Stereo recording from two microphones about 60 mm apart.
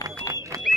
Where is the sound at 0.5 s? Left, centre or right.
Right.